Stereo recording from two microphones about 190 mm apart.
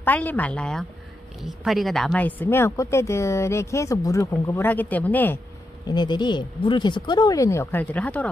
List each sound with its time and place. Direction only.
0.0 s speech: 10° left (ahead or behind)
5.9 s speech: 25° left (ahead or behind); by 8.3 s 10° left (ahead or behind)